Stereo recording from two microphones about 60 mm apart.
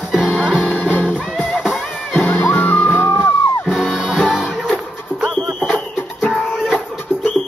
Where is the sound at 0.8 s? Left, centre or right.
Left.